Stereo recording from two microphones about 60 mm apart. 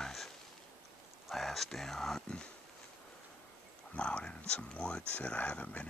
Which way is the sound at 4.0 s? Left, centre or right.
Centre.